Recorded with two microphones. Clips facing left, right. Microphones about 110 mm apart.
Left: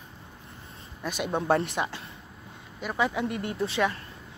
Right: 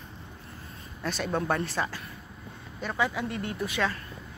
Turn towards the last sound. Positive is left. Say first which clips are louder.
# left 3 dB
turn(degrees=25)  # may be behind; listen again after turning